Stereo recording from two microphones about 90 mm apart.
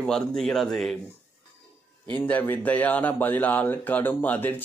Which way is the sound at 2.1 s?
20° left (ahead or behind).